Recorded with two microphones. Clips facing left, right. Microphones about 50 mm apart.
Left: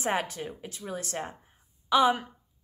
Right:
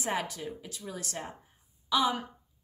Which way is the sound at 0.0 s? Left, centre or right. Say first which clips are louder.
Left 3 dB; left.